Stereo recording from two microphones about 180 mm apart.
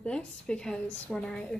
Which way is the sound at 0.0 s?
5° left (ahead or behind).